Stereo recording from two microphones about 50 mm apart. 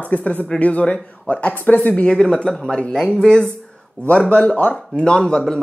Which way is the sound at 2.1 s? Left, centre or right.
Centre.